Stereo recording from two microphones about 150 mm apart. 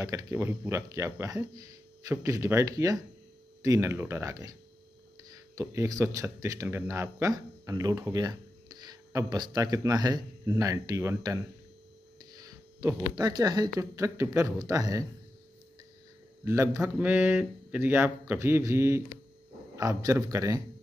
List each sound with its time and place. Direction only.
0.0 s speech: 20° right (ahead or behind)
12.3 s a sound: 25° right (ahead or behind)
13.7 s speech: 20° right (ahead or behind)
16.4 s a man's voice: 20° right (ahead or behind)